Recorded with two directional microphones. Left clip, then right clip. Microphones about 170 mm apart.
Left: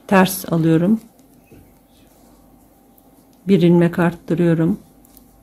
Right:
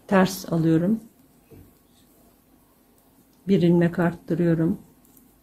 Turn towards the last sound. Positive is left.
turn(degrees=25)  # may be behind; listen again after turning